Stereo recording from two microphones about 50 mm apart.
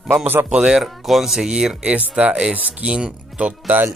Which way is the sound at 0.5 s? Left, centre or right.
Centre.